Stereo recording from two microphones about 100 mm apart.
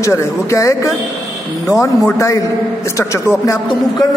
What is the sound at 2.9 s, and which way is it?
Speech, 30° left (ahead or behind).